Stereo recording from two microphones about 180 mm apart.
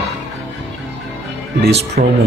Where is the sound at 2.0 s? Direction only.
50° right (ahead or behind).